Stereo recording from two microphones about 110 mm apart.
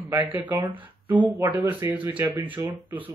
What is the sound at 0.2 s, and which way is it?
Speech, 15° right (ahead or behind).